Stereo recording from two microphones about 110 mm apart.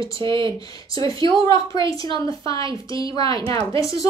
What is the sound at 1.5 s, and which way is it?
A woman's voice, 30° left (ahead or behind).